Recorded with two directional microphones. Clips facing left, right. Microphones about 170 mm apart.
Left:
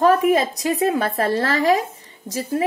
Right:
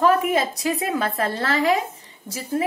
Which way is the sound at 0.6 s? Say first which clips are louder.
Left 4 dB; 35° left (ahead or behind).